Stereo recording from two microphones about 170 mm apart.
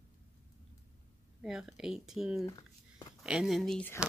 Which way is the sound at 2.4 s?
20° left (ahead or behind).